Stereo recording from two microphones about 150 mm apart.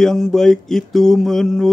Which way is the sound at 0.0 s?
5° left (ahead or behind).